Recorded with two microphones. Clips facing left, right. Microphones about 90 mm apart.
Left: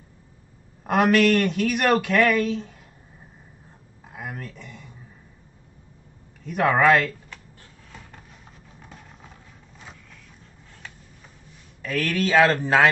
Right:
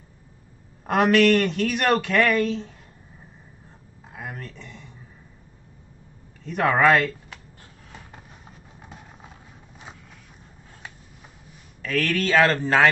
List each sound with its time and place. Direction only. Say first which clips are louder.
0.8 s a man's voice: right 1 dB; 5° left (ahead or behind)
4.1 s a sound: left 1 dB; 5° left (ahead or behind)
6.4 s a man's voice: even; 5° left (ahead or behind)
8.7 s vehicle: right 1 dB; 15° right (ahead or behind)
11.8 s speech: even; 10° left (ahead or behind)